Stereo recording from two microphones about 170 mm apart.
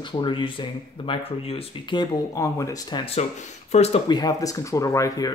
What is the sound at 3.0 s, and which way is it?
Speech, 35° left (ahead or behind).